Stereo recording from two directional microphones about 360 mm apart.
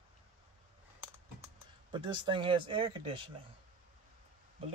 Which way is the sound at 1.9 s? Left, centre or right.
Centre.